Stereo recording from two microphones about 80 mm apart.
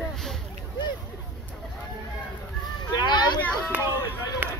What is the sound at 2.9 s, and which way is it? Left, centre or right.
Speech, left.